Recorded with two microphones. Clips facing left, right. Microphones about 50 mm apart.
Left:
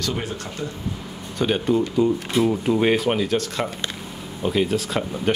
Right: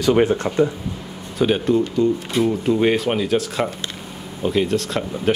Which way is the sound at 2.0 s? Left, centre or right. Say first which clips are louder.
Right 1 dB; centre.